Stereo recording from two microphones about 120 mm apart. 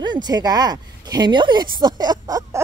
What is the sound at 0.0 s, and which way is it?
Speech, 35° right (ahead or behind).